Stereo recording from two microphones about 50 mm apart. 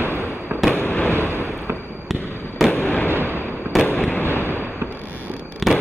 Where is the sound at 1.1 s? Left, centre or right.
Right.